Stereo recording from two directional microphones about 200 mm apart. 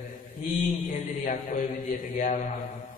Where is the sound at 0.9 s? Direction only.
40° left (ahead or behind).